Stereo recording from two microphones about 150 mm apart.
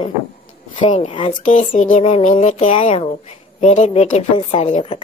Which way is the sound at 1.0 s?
35° left (ahead or behind).